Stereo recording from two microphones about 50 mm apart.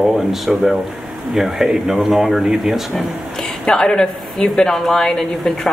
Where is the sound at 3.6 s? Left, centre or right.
Centre.